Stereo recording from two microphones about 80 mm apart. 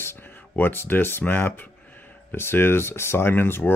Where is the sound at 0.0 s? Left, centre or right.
Left.